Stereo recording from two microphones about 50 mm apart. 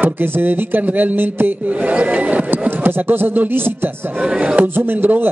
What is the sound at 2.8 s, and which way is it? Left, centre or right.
Speech, right.